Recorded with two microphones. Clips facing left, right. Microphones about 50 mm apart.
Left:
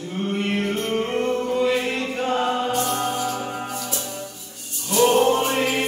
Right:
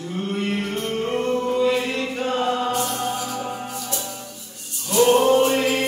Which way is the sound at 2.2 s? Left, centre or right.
Centre.